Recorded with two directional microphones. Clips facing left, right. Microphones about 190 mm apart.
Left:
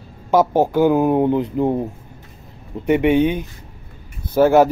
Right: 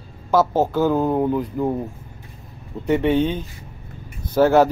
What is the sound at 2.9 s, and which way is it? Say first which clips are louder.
Speech: left 3 dB; 15° left (ahead or behind).